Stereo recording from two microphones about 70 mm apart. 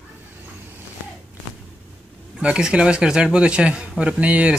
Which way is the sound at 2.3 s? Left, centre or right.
Centre.